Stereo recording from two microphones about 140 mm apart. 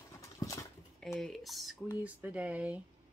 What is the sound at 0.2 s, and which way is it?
Horse, 25° left (ahead or behind).